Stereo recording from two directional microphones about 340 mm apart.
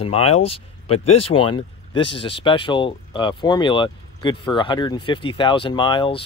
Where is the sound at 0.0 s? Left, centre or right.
Centre.